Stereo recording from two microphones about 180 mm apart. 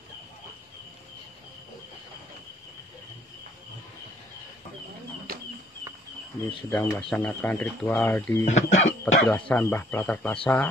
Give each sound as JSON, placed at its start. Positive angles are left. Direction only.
{"t": 5.3, "sound": "a sound", "side_deg": -55}
{"t": 6.7, "sound": "speech", "side_deg": 10}
{"t": 8.5, "sound": "speech", "side_deg": 40}
{"t": 9.0, "sound": "speech", "side_deg": 10}